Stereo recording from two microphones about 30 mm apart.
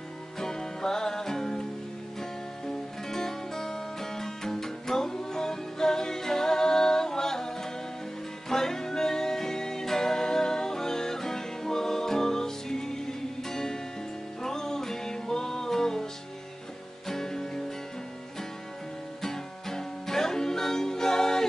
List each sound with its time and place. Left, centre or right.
0.4 s music: centre
17.1 s music: centre
19.2 s music: centre